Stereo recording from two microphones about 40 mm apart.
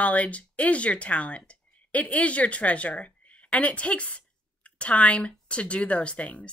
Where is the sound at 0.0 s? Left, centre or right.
Left.